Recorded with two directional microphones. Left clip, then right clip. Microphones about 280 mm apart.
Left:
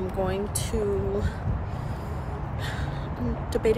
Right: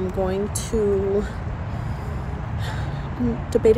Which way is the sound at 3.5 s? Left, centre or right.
Centre.